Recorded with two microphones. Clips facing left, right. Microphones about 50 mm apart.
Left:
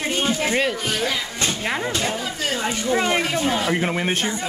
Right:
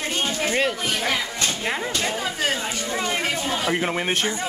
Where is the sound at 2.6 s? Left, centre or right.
Left.